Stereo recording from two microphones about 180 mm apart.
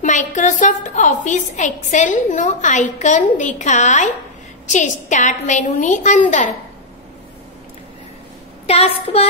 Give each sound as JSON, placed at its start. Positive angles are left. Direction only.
{"t": 0.0, "sound": "a woman's voice", "side_deg": 40}
{"t": 8.6, "sound": "a woman's voice", "side_deg": 35}